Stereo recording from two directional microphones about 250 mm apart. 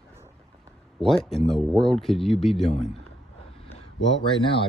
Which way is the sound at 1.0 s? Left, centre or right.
Centre.